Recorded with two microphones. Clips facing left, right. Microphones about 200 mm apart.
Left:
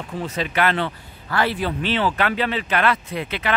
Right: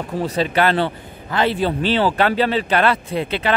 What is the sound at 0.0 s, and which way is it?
Speech, 35° right (ahead or behind).